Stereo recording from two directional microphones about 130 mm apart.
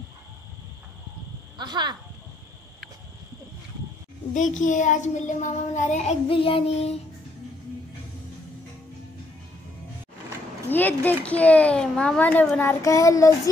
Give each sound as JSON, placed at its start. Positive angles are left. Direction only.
{"t": 1.6, "sound": "speech", "side_deg": -35}
{"t": 4.3, "sound": "speech", "side_deg": 75}
{"t": 6.2, "sound": "child singing", "side_deg": 45}
{"t": 10.7, "sound": "a child's voice", "side_deg": 15}